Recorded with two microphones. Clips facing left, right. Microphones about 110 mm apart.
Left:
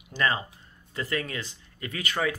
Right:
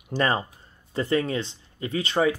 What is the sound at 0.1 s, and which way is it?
Speech, 35° right (ahead or behind).